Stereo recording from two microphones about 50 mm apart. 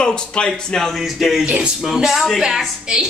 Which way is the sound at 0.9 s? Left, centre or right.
Centre.